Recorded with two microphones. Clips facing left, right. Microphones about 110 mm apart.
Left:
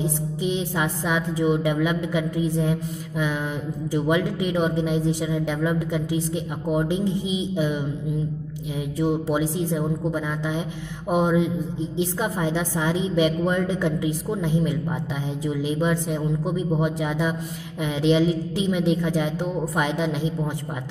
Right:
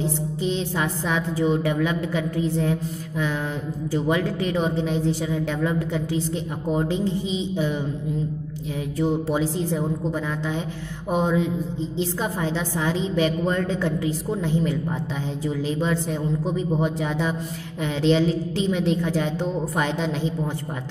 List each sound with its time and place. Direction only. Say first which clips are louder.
0.0 s a woman's voice: even; 15° left (ahead or behind)
8.9 s a woman's voice: even; 15° left (ahead or behind)